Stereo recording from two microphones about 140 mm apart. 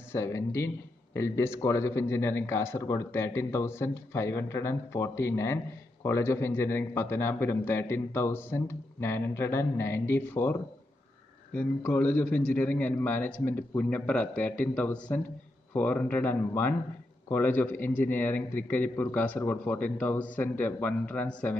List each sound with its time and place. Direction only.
0.1 s a man's voice: 20° left (ahead or behind)